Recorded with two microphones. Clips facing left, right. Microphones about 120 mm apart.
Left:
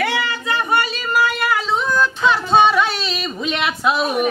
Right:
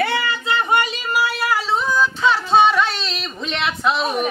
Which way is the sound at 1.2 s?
Centre (ahead or behind).